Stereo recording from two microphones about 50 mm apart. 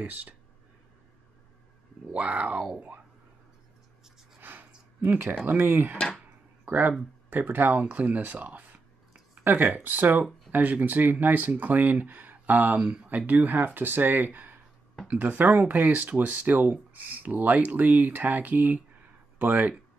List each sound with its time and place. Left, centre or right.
0.0 s speech: right
2.1 s speech: right
4.4 s a sound: right
6.6 s speech: right